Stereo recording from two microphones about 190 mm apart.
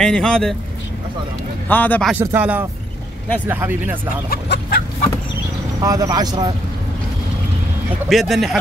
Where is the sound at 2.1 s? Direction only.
10° right (ahead or behind).